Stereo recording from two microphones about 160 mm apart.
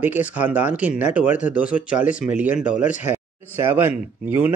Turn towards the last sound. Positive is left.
turn(degrees=-10)  # may be behind; listen again after turning